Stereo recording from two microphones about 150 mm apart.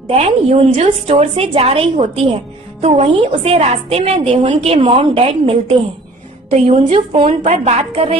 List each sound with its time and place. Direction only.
0.1 s a woman's voice: 45° right (ahead or behind)